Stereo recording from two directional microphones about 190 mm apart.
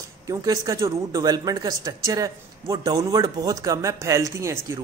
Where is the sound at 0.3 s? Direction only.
20° right (ahead or behind).